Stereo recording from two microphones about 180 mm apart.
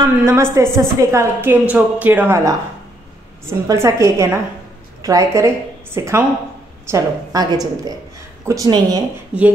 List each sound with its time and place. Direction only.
0.0 s a woman's voice: 15° right (ahead or behind)